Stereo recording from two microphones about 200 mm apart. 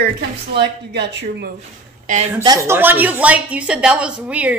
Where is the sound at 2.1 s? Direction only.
35° right (ahead or behind).